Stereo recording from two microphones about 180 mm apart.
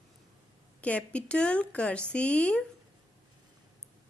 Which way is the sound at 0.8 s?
5° left (ahead or behind).